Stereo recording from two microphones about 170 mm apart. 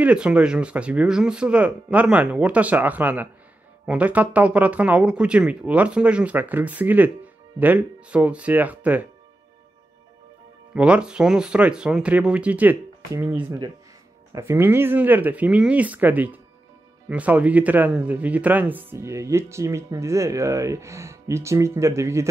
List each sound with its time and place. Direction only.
0.0 s speech: 5° right (ahead or behind)
10.7 s speech: 5° right (ahead or behind)